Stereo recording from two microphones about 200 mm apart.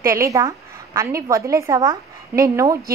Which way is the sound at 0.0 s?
15° right (ahead or behind).